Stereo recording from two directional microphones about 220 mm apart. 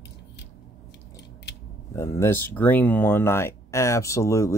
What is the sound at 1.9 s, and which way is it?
Speech, 15° left (ahead or behind).